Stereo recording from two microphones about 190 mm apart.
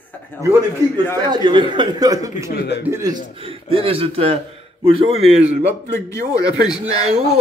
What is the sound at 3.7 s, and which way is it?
A man's voice, 30° right (ahead or behind).